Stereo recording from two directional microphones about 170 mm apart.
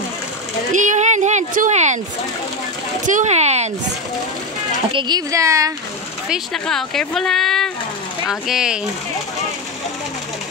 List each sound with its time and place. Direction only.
0.7 s speech: 45° right (ahead or behind)
3.1 s speech: 45° right (ahead or behind)
4.9 s speech: 25° right (ahead or behind)
6.2 s speech: centre (ahead or behind)